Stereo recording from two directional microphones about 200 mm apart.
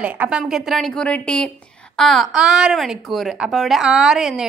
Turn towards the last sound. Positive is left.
turn(degrees=-5)  # may be behind; listen again after turning